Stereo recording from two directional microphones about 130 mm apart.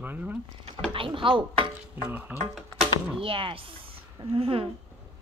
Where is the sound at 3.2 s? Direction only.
45° right (ahead or behind).